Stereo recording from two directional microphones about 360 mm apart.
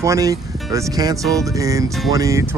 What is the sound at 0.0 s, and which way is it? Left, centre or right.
Speech, centre.